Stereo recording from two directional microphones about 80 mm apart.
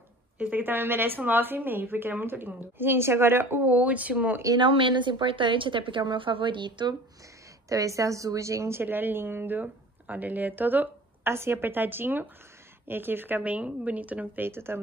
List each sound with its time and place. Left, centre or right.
0.4 s a woman's voice: right
4.6 s a woman's voice: right
7.7 s a woman's voice: right